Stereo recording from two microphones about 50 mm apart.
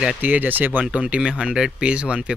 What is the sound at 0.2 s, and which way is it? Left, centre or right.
Speech, right.